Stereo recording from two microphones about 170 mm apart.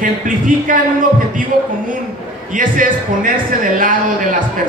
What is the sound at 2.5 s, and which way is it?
A man's voice, 50° right (ahead or behind).